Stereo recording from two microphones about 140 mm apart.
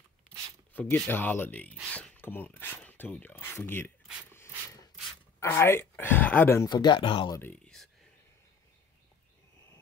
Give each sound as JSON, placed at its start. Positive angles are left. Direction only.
{"t": 0.7, "sound": "speech", "side_deg": 15}
{"t": 6.7, "sound": "speech", "side_deg": 35}
{"t": 7.3, "sound": "speech", "side_deg": 15}